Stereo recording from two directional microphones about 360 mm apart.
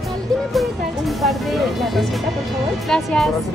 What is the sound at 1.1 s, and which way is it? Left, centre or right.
Speech, centre.